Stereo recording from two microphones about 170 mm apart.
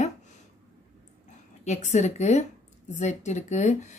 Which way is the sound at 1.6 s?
45° left (ahead or behind).